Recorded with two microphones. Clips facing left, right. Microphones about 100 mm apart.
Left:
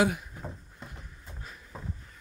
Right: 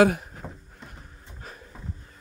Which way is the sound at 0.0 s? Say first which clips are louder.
Right 7 dB; 55° right (ahead or behind).